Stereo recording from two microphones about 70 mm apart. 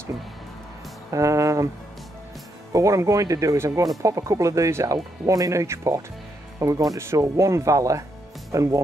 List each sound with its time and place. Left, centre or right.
1.1 s speech: right
2.7 s speech: right
4.9 s speech: right
7.0 s speech: right